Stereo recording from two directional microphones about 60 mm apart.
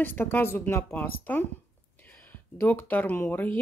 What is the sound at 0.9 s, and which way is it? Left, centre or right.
Speech, left.